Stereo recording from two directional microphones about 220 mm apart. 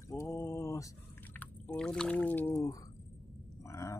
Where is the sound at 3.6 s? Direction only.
15° left (ahead or behind).